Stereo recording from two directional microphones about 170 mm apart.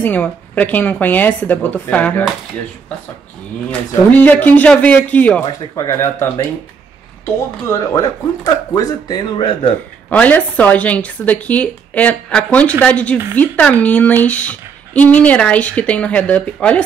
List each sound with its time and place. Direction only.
0.0 s speech: 10° left (ahead or behind)
4.5 s speech: 10° left (ahead or behind)
7.6 s speech: 20° left (ahead or behind)
10.0 s speech: 10° left (ahead or behind)